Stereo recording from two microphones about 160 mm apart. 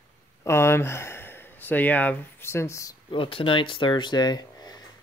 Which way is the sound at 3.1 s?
35° left (ahead or behind).